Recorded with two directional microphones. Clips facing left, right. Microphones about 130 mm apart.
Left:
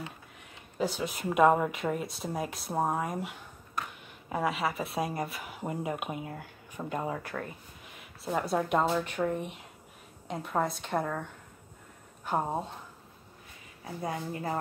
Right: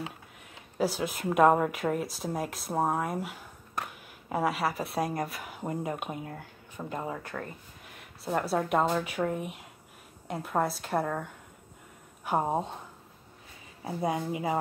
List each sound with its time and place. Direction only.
0.7 s a woman's voice: 5° right (ahead or behind)
12.3 s a woman's voice: 15° right (ahead or behind)
13.8 s a woman's voice: 15° right (ahead or behind)